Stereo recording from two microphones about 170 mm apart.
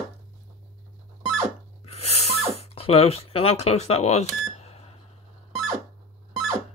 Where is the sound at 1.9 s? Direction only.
40° left (ahead or behind).